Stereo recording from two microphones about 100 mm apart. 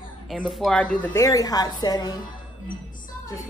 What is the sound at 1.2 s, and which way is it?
Speech, 35° left (ahead or behind).